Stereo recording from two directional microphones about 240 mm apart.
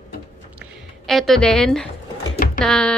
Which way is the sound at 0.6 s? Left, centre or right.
Centre.